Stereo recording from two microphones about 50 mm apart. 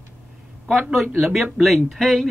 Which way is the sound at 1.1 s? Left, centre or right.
Centre.